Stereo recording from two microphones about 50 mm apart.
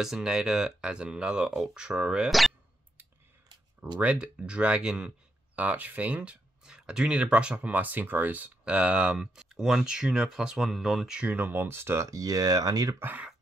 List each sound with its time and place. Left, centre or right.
0.0 s speech: centre
2.2 s speech: centre
3.8 s speech: right
5.6 s speech: right
8.6 s speech: right
11.2 s speech: right
11.6 s speech: right
13.0 s speech: right